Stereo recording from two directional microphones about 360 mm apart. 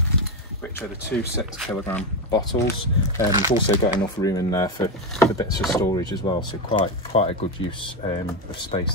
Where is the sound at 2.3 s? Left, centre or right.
Centre.